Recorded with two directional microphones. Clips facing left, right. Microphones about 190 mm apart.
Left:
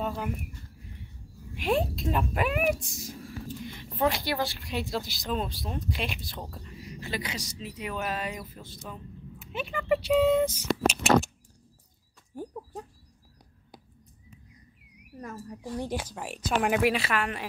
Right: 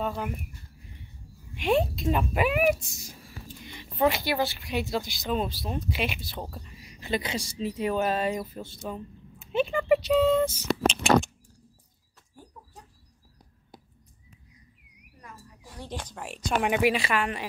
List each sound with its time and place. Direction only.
0.0 s speech: centre (ahead or behind)
1.5 s a woman's voice: centre (ahead or behind); by 9.8 s 30° right (ahead or behind)
10.0 s music: 10° left (ahead or behind)
10.8 s speech: 5° left (ahead or behind)
15.1 s speech: 45° left (ahead or behind)
15.8 s a woman's voice: 10° left (ahead or behind)